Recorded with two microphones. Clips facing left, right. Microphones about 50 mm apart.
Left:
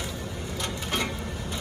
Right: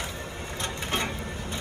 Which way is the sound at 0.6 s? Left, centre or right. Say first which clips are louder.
Even; right.